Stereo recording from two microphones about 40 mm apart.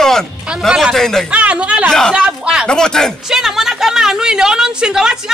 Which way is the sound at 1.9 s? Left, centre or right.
Centre.